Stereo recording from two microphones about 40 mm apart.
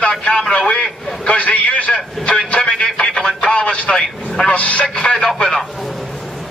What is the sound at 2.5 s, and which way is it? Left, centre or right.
Speech, left.